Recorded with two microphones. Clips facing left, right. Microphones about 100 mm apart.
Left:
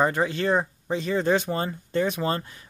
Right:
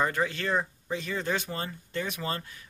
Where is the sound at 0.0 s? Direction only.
25° left (ahead or behind).